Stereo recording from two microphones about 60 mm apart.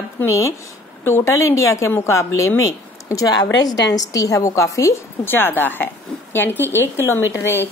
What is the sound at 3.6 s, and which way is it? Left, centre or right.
A woman's voice, left.